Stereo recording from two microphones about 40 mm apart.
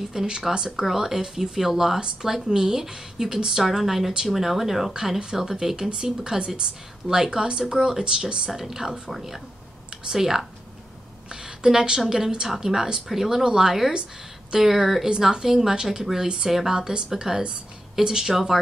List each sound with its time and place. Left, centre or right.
0.1 s a woman's voice: centre
8.5 s a woman's voice: centre
11.4 s a woman's voice: centre